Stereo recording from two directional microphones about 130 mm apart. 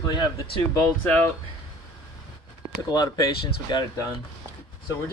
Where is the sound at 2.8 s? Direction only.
30° left (ahead or behind).